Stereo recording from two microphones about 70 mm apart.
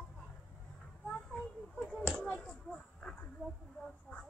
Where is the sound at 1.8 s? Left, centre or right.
Centre.